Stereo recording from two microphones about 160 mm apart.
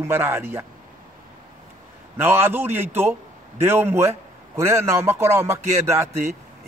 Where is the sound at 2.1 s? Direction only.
15° right (ahead or behind).